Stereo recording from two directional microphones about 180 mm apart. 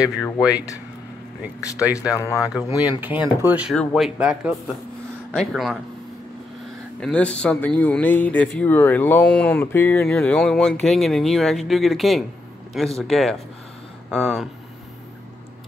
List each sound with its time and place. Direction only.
0.4 s speech: 5° right (ahead or behind)
1.6 s speech: 20° left (ahead or behind)
2.9 s speech: 10° right (ahead or behind)
7.0 s speech: 5° left (ahead or behind)